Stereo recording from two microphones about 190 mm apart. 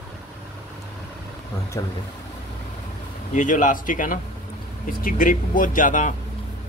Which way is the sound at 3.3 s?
40° left (ahead or behind).